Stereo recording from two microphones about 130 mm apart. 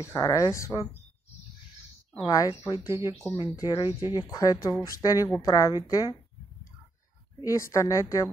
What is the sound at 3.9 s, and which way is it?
Speech, 20° right (ahead or behind).